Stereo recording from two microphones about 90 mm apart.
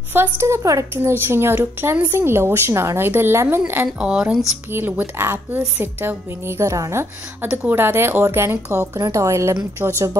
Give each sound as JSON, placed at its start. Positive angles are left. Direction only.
{"t": 0.1, "sound": "a woman's voice", "side_deg": -25}
{"t": 4.0, "sound": "speech", "side_deg": -10}
{"t": 4.7, "sound": "a woman's voice", "side_deg": -20}
{"t": 8.9, "sound": "speech", "side_deg": -40}